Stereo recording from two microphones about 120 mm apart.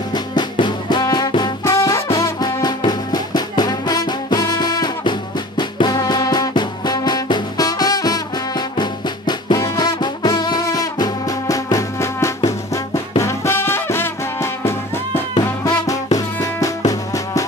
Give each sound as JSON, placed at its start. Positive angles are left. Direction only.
{"t": 0.1, "sound": "music", "side_deg": 40}